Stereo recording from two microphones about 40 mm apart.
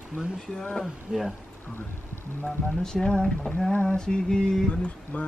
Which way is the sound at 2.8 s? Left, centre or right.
Centre.